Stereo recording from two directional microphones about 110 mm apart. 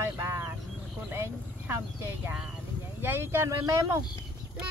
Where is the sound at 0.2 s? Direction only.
20° right (ahead or behind).